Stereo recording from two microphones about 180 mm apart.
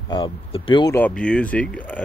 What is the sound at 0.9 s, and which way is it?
Speech, 5° left (ahead or behind).